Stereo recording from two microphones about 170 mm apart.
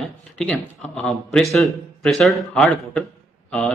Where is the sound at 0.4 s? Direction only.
5° left (ahead or behind).